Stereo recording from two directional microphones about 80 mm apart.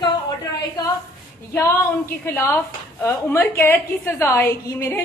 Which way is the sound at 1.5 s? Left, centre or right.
Left.